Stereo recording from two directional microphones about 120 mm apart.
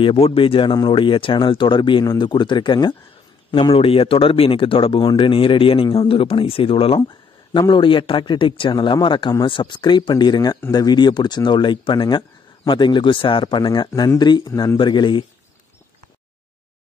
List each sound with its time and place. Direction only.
0.0 s speech: 55° left (ahead or behind)
3.7 s speech: 55° left (ahead or behind)
7.5 s speech: 40° left (ahead or behind)
14.5 s a man's voice: 25° left (ahead or behind)
14.8 s speech: 40° left (ahead or behind)